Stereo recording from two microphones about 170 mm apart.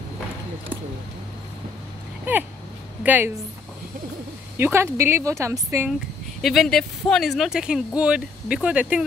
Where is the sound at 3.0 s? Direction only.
10° right (ahead or behind).